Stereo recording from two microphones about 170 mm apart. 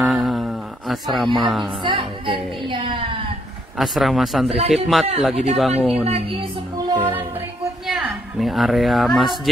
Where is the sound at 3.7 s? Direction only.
Centre (ahead or behind).